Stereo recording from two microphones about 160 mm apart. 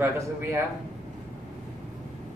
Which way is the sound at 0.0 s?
15° right (ahead or behind).